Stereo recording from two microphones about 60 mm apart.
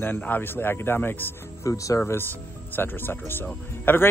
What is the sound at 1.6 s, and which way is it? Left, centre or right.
Speech, left.